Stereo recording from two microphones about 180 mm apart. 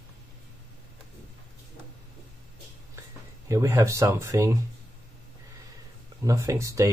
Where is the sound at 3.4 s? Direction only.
15° right (ahead or behind).